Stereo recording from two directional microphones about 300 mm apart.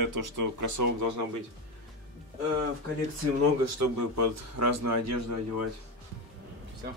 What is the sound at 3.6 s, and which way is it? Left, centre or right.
A man's voice, right.